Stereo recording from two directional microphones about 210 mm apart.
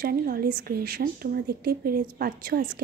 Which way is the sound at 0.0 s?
45° right (ahead or behind).